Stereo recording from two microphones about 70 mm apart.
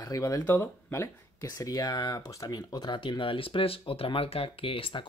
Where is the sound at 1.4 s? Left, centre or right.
Left.